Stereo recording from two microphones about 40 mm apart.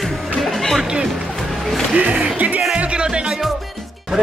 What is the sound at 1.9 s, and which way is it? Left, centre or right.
Speech, right.